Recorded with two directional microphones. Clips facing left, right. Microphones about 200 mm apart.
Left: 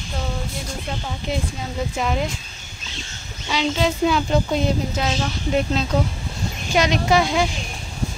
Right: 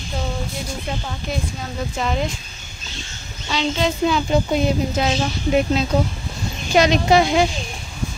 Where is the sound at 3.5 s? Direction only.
5° left (ahead or behind).